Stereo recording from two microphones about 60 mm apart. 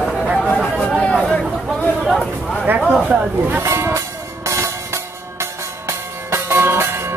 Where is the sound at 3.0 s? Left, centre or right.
Right.